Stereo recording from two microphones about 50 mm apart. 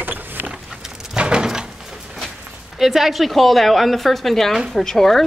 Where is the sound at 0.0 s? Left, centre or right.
Right.